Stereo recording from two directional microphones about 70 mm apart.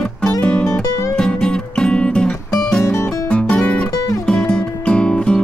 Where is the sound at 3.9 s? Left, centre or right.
Left.